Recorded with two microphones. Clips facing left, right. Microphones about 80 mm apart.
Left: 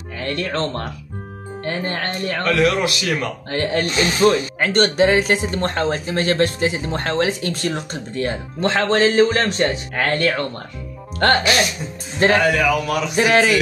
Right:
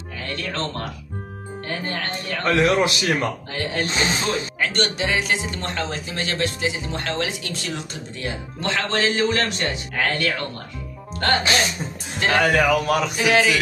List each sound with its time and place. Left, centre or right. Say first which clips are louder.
0.2 s speech: left 5 dB; left
2.4 s a man's voice: even; right
3.4 s speech: left 6 dB; left
3.8 s a man's voice: left 3 dB; right
4.6 s speech: left 7 dB; left
11.2 s speech: left 5 dB; left
11.8 s a man's voice: left 1 dB; right
12.4 s a man's voice: left 1 dB; right
13.1 s speech: left 6 dB; left